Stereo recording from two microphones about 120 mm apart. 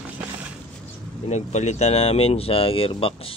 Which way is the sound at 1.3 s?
70° left (ahead or behind).